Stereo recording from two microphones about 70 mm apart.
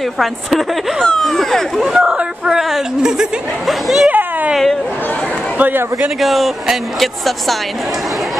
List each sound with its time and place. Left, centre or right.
0.2 s speech: centre
4.1 s a sound: right
5.6 s a man's voice: right
6.2 s speech: centre